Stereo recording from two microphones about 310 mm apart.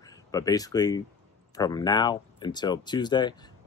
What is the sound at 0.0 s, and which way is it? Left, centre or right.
Speech, centre.